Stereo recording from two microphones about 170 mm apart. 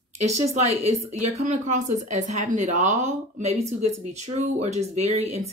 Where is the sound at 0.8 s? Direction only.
40° right (ahead or behind).